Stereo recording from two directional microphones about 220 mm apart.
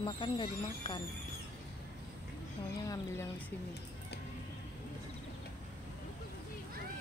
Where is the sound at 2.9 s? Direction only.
10° left (ahead or behind).